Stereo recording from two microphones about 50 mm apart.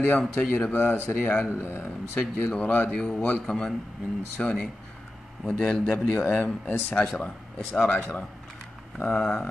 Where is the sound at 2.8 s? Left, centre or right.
Centre.